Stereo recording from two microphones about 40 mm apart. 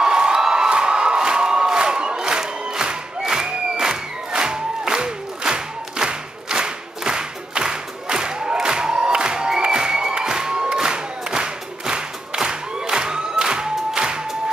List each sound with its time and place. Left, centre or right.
0.0 s crowd: right